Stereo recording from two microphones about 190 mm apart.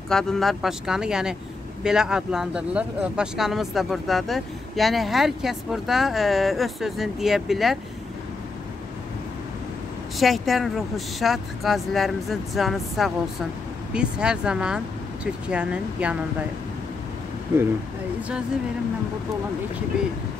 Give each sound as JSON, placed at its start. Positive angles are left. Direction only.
{"t": 0.1, "sound": "speech", "side_deg": 5}
{"t": 10.1, "sound": "speech", "side_deg": 0}